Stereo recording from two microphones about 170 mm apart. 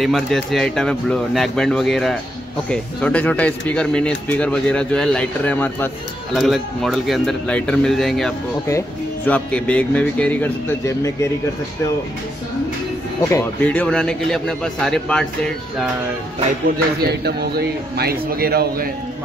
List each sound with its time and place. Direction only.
0.0 s speech: centre (ahead or behind)
8.6 s speech: 15° left (ahead or behind)
13.3 s speech: 10° left (ahead or behind)
16.7 s a man's voice: 70° right (ahead or behind)